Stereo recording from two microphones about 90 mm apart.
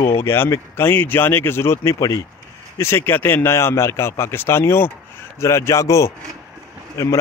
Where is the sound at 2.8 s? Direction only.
30° left (ahead or behind).